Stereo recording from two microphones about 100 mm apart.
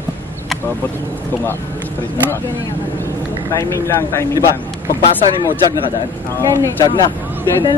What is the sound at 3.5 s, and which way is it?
Speech, 30° left (ahead or behind).